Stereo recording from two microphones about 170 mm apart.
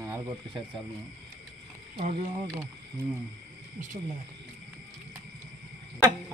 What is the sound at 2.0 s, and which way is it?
Speech, 40° right (ahead or behind).